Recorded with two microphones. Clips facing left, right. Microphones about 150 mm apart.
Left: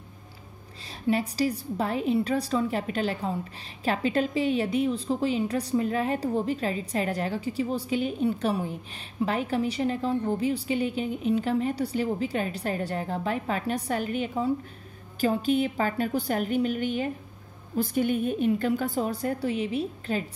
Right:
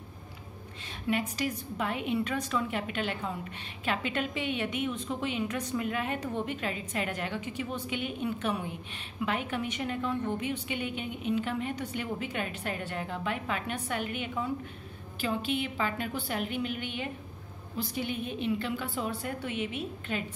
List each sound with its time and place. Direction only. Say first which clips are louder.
1.0 s a woman's voice: left 5 dB; 35° left (ahead or behind)